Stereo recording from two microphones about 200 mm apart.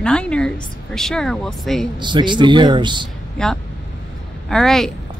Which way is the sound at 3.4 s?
5° left (ahead or behind).